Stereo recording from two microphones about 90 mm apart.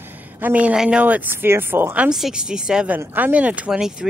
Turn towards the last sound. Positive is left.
turn(degrees=-10)  # may be behind; listen again after turning